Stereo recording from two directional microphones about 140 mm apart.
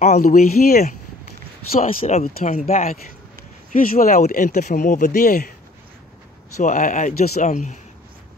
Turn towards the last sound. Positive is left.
turn(degrees=60)  # may be behind; listen again after turning